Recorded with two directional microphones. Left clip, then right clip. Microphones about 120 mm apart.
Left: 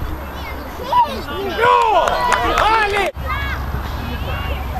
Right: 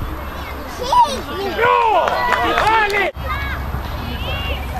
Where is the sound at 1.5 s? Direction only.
40° left (ahead or behind).